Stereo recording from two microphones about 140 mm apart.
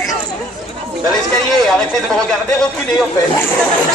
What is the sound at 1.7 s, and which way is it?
Speech, centre (ahead or behind).